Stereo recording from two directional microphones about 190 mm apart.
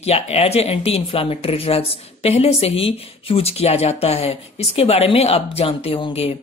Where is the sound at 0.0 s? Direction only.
35° left (ahead or behind).